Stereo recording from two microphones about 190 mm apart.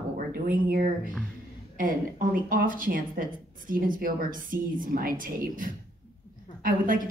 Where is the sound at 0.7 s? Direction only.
45° right (ahead or behind).